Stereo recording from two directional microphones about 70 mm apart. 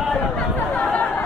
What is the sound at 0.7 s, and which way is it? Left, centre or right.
Chatter, centre.